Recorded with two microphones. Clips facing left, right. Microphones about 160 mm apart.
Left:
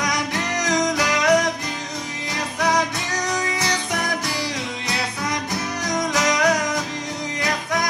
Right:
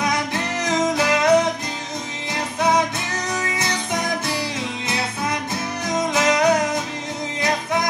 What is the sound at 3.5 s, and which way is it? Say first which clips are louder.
Music: even; 20° right (ahead or behind).